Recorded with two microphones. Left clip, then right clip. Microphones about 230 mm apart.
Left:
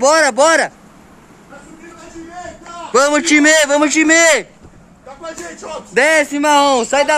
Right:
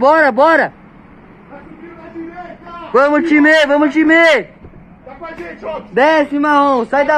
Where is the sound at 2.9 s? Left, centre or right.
Left.